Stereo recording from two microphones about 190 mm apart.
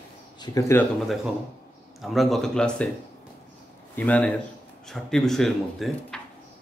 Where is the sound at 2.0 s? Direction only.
Centre (ahead or behind).